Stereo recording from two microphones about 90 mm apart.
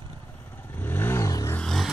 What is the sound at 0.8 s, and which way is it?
Vehicle, 25° left (ahead or behind).